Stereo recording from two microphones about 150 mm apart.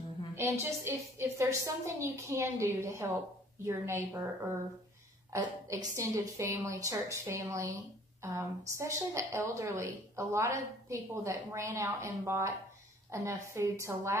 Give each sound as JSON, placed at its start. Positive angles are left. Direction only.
{"t": 0.4, "sound": "a woman's voice", "side_deg": -15}
{"t": 5.3, "sound": "a woman's voice", "side_deg": -20}